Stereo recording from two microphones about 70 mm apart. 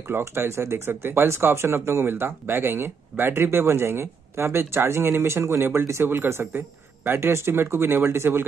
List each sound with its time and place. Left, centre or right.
0.1 s speech: right